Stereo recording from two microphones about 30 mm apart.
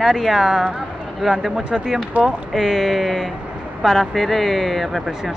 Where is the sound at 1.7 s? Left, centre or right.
Centre.